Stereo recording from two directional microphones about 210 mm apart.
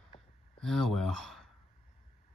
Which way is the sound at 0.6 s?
Centre (ahead or behind).